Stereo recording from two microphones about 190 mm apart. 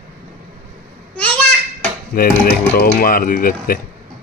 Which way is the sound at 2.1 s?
50° left (ahead or behind).